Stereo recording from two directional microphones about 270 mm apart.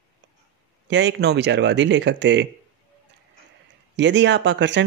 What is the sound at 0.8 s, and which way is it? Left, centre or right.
Speech, right.